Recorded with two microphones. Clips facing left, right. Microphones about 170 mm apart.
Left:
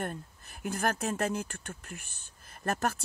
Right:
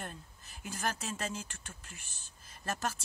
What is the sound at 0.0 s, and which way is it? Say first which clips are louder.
Speech: left 9 dB; 55° left (ahead or behind).